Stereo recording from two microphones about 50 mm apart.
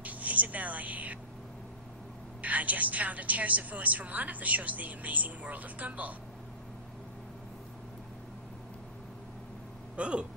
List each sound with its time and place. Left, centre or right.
0.0 s speech: right
2.4 s a woman's voice: right
9.9 s speech: right